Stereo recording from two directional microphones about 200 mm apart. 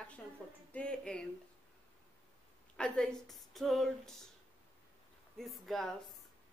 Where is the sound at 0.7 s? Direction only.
5° left (ahead or behind).